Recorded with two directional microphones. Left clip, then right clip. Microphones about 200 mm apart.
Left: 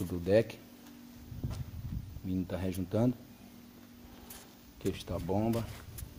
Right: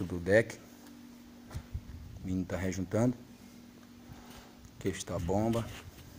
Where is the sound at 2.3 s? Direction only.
10° left (ahead or behind).